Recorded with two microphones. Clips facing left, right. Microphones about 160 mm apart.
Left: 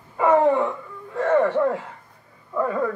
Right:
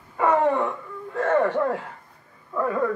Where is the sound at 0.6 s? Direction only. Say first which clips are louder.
Left 1 dB; centre (ahead or behind).